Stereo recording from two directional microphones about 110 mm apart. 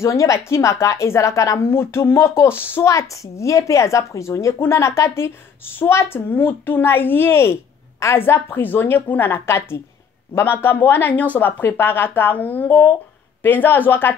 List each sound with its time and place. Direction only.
0.0 s speech: 30° left (ahead or behind)